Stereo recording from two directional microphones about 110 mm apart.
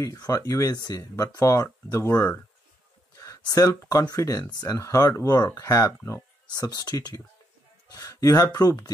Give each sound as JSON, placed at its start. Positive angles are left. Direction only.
{"t": 0.0, "sound": "speech", "side_deg": 35}
{"t": 7.9, "sound": "a sound", "side_deg": 30}
{"t": 8.5, "sound": "speech", "side_deg": 35}